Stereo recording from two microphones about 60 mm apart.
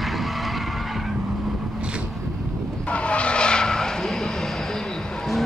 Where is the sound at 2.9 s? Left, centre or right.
Centre.